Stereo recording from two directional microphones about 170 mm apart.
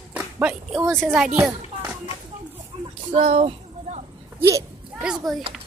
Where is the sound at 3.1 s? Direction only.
35° right (ahead or behind).